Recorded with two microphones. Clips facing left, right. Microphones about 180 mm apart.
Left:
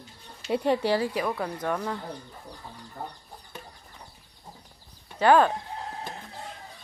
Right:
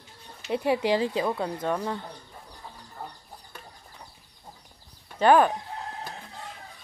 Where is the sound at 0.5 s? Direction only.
10° right (ahead or behind); by 1.8 s 25° right (ahead or behind).